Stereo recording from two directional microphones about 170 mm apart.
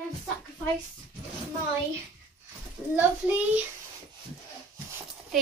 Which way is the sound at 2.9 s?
10° right (ahead or behind).